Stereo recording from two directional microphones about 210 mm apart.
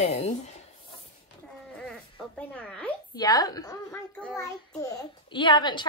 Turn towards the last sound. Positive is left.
turn(degrees=20)  # may be behind; listen again after turning